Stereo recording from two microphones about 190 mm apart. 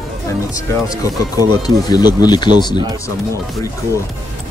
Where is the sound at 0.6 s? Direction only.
20° left (ahead or behind).